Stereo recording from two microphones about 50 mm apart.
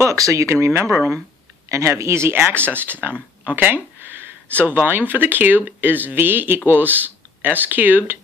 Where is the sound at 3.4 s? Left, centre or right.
Right.